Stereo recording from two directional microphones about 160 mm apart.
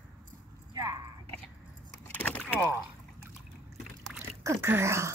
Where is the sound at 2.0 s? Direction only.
10° left (ahead or behind).